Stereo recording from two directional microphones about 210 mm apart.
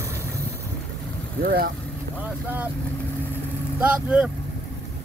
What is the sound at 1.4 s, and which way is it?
Speech, 45° right (ahead or behind).